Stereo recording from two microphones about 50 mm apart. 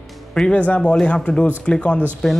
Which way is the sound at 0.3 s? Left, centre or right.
Centre.